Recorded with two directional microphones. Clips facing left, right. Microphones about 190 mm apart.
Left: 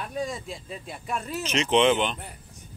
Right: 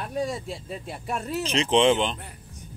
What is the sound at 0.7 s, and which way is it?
Speech, 35° right (ahead or behind).